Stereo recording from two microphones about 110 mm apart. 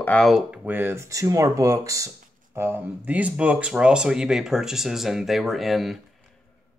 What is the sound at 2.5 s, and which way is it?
Speech, 20° right (ahead or behind).